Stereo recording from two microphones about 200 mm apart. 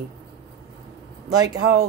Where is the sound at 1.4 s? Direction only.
15° right (ahead or behind).